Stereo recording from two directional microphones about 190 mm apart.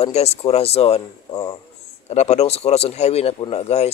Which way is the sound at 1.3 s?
20° left (ahead or behind).